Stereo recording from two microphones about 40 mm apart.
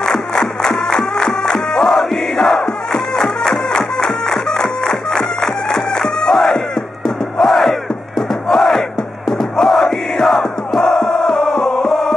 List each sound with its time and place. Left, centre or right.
0.0 s music: centre
2.3 s crowd: centre
7.3 s battle cry: centre
8.5 s crowd: centre
10.2 s music: centre